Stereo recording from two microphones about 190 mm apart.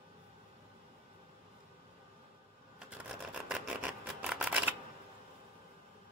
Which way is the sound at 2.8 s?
5° right (ahead or behind).